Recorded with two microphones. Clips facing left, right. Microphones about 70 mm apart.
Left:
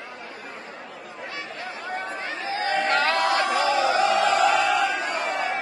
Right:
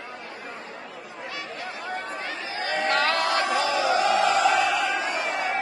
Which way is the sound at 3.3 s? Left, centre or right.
Left.